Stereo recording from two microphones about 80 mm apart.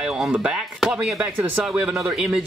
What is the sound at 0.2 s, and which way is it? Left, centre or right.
Speech, centre.